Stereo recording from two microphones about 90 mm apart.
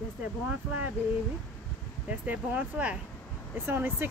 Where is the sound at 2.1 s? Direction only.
15° right (ahead or behind).